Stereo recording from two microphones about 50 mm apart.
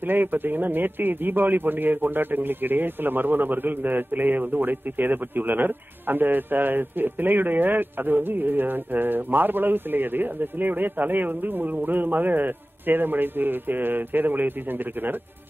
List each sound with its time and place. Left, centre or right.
0.0 s a man's voice: right